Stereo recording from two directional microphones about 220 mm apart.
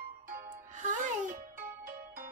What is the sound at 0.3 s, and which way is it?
Music, 40° right (ahead or behind).